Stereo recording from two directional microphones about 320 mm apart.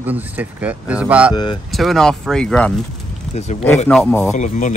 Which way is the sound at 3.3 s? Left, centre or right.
Left.